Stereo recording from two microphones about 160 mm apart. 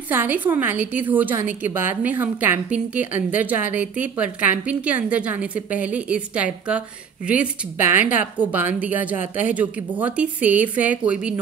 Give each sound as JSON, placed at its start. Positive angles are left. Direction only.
{"t": 0.1, "sound": "a woman's voice", "side_deg": -10}